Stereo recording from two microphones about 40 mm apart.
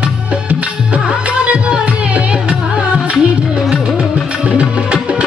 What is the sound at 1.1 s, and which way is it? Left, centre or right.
Music, right.